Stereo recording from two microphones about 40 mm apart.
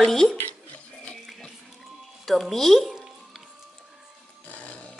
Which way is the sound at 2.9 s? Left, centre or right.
Centre.